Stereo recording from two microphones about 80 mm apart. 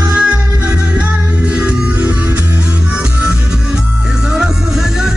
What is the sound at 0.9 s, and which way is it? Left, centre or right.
Music, centre.